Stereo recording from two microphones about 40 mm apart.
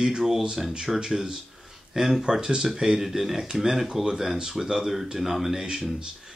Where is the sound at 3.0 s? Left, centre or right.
Centre.